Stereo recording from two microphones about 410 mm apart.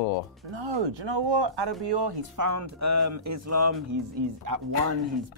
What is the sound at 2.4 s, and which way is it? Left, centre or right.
Speech, right.